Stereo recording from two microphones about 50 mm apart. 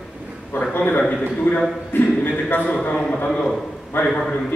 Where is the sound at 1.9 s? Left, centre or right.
Left.